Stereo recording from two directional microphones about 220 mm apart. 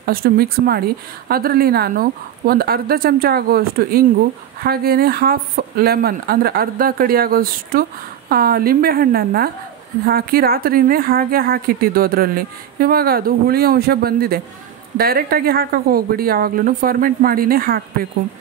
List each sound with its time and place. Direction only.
0.0 s a woman's voice: 45° right (ahead or behind)